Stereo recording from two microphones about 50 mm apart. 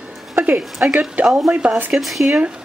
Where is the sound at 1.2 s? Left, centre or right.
Centre.